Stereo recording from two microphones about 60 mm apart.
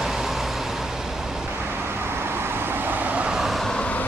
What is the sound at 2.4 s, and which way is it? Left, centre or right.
Vehicle, right.